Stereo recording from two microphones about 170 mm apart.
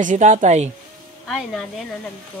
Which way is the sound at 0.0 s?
50° right (ahead or behind).